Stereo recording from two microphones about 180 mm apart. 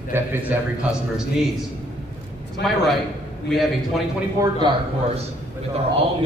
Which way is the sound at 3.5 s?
Centre (ahead or behind).